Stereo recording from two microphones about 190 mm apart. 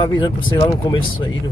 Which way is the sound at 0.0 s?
25° left (ahead or behind).